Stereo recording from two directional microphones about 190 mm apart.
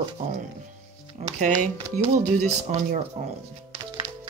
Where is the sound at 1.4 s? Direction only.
40° right (ahead or behind).